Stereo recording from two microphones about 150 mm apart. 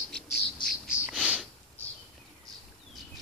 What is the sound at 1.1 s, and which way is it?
Sniff, 5° right (ahead or behind).